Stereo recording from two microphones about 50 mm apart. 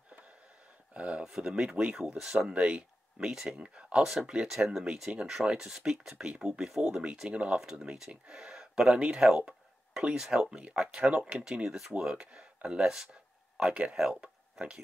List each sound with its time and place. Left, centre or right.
0.9 s speech: right
2.1 s speech: centre
2.5 s speech: right
5.7 s speech: centre
9.5 s a sound: centre
10.3 s speech: centre
14.1 s a sound: centre